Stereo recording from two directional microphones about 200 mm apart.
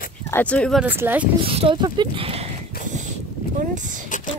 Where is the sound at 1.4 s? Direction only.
25° right (ahead or behind).